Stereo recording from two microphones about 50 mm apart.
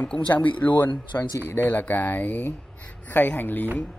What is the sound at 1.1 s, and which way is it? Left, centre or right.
Speech, left.